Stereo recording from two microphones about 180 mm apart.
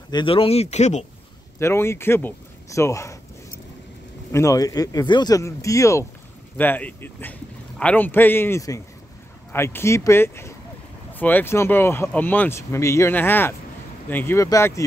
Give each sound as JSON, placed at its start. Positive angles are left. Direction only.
{"t": 0.1, "sound": "speech", "side_deg": 30}
{"t": 1.6, "sound": "speech", "side_deg": 15}
{"t": 4.3, "sound": "speech", "side_deg": 15}